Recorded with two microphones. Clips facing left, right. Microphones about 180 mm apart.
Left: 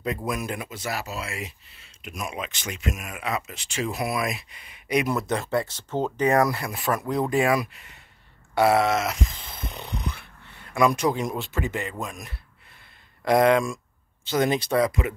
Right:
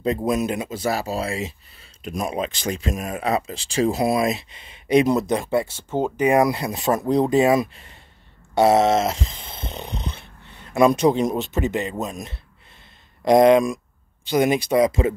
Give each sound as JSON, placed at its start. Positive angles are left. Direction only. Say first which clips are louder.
{"t": 0.0, "sound": "speech", "louder": "right 7 dB", "side_deg": -25}
{"t": 5.3, "sound": "speech", "louder": "right 4 dB", "side_deg": -15}
{"t": 14.9, "sound": "speech", "louder": "right 7 dB", "side_deg": -30}